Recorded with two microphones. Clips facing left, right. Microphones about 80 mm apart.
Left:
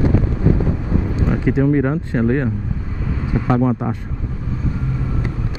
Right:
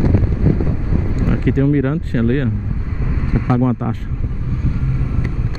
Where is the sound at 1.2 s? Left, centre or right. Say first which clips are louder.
Right 1 dB; centre.